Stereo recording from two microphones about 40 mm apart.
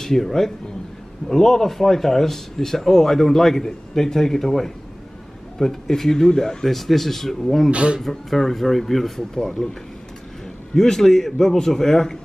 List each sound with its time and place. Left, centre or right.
0.0 s speech: centre
7.7 s speech: right
8.0 s speech: centre
9.3 s speech: centre
10.7 s speech: centre